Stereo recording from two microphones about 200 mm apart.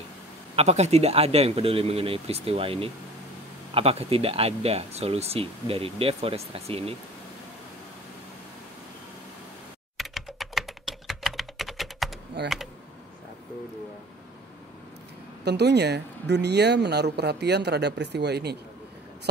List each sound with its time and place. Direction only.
0.6 s speech: 30° right (ahead or behind)
9.9 s computer keyboard: centre (ahead or behind)
12.4 s speech: 55° right (ahead or behind)
15.4 s speech: 55° right (ahead or behind)